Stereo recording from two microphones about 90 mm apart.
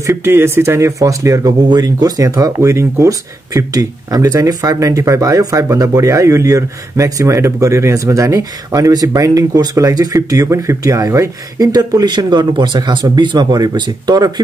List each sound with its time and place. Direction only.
0.0 s speech: 30° right (ahead or behind)
1.7 s speech: 50° right (ahead or behind)